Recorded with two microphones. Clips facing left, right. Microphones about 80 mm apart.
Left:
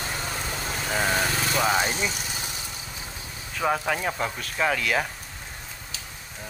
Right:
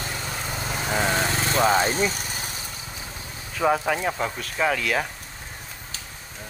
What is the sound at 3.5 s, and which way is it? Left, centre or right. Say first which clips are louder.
Speech: right 3 dB; centre.